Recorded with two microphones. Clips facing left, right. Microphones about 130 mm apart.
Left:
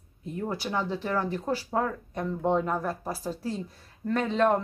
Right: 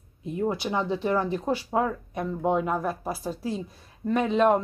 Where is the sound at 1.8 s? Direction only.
10° right (ahead or behind).